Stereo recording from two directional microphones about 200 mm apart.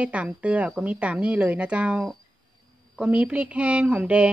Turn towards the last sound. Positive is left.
turn(degrees=-5)  # may be behind; listen again after turning